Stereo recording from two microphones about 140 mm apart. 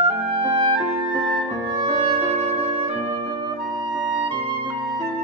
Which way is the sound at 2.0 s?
45° right (ahead or behind).